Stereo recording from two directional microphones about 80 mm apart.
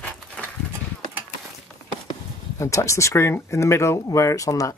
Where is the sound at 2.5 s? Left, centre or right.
Left.